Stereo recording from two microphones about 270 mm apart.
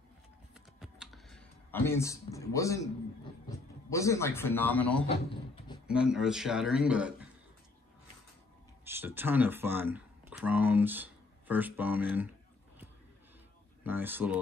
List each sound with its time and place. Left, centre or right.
0.7 s computer keyboard: centre
3.4 s a man's voice: centre
5.3 s a sound: centre
5.9 s speech: centre
8.8 s speech: centre
13.8 s speech: centre